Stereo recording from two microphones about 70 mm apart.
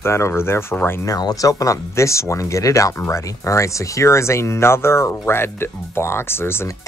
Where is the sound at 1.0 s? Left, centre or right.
Left.